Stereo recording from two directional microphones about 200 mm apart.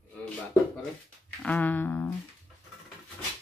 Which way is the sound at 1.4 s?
10° left (ahead or behind).